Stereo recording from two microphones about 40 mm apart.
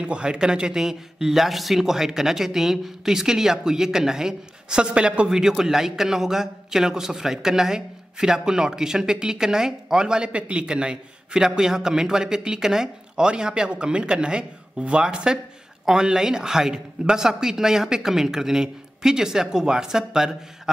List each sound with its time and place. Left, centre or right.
0.0 s a man's voice: right
0.8 s speech: centre; by 5.3 s right
5.5 s a man's voice: centre